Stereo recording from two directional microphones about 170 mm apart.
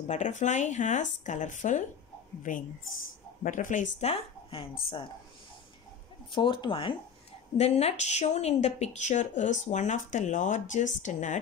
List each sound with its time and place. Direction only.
0.1 s speech: 45° left (ahead or behind)
6.3 s speech: 30° left (ahead or behind); by 11.3 s 45° left (ahead or behind)